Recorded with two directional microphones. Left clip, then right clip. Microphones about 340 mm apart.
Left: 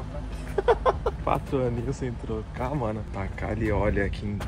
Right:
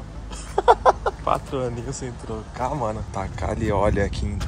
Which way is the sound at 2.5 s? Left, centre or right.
Centre.